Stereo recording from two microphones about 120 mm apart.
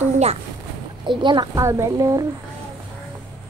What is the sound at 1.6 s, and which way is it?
Speech, 25° right (ahead or behind).